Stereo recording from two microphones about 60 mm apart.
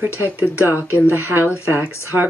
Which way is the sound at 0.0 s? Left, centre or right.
Right.